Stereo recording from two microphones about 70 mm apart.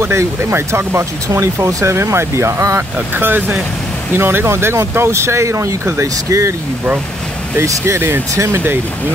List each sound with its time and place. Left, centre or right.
0.0 s speech: right
3.2 s speech: right
7.5 s speech: right